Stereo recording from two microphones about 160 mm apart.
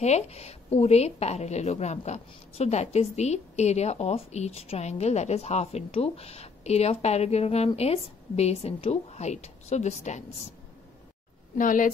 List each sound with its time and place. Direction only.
0.0 s a woman's voice: 40° left (ahead or behind)
11.5 s speech: 55° left (ahead or behind)